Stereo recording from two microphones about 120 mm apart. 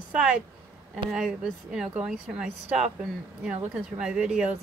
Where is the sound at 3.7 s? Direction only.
10° right (ahead or behind).